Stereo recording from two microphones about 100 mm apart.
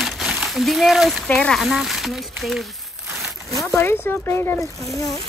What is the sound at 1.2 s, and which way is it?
Speech, 10° left (ahead or behind).